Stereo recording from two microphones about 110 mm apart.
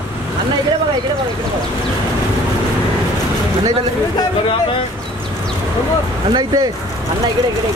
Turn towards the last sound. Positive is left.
turn(degrees=-40)  # may be behind; listen again after turning